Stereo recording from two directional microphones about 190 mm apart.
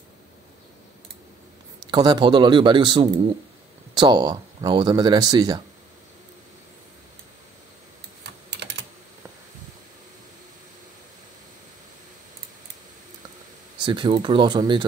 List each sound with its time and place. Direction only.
1.9 s speech: 20° right (ahead or behind)
8.5 s computer keyboard: 65° right (ahead or behind)
13.8 s speech: 25° right (ahead or behind)